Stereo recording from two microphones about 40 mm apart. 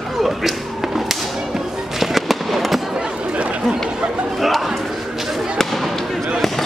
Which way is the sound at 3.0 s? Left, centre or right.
Right.